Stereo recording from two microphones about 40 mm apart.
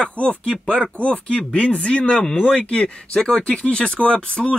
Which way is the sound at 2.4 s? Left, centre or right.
Left.